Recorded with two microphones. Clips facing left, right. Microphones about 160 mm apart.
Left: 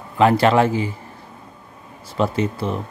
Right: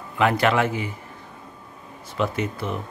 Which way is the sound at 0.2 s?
30° left (ahead or behind).